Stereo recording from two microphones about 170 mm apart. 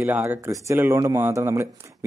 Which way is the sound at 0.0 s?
15° right (ahead or behind).